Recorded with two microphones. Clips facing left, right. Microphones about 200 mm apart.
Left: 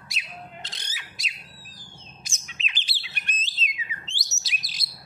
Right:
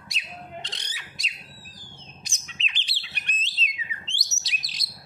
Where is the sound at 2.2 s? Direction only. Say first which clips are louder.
Left 2 dB; centre (ahead or behind).